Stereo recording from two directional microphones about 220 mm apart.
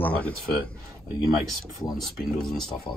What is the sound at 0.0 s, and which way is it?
Speech, 5° left (ahead or behind).